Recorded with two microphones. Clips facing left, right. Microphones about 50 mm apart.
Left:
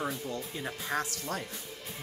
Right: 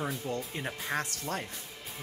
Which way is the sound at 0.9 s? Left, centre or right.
Centre.